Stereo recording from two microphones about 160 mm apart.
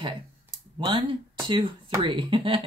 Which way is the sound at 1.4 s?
35° right (ahead or behind).